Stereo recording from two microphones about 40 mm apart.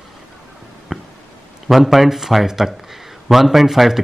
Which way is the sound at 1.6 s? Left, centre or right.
Centre.